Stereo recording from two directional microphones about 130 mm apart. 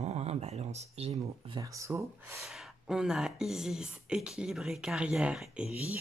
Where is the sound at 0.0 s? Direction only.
55° right (ahead or behind).